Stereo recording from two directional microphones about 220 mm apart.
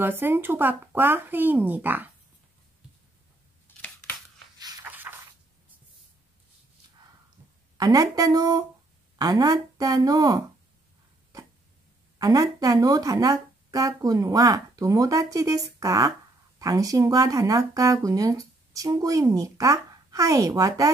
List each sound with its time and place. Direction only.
0.0 s speech: 10° right (ahead or behind)
3.6 s scissors: 10° left (ahead or behind)
4.6 s a sound: 15° right (ahead or behind)
7.7 s speech: 15° right (ahead or behind)
12.2 s speech: 15° right (ahead or behind)